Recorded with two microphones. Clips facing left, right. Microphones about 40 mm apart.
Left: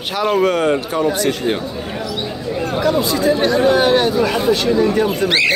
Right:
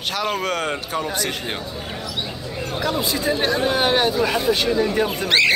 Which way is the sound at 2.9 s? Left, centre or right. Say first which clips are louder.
Left 6 dB; centre.